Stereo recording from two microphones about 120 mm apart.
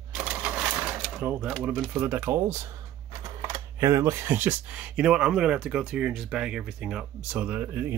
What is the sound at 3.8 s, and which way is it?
Speech, 25° right (ahead or behind).